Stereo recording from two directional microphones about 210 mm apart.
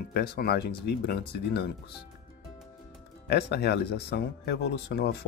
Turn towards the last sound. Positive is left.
turn(degrees=50)  # may be behind; listen again after turning